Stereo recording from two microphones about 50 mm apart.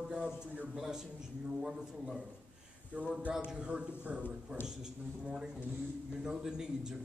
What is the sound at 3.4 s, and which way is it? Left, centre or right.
Speech, right.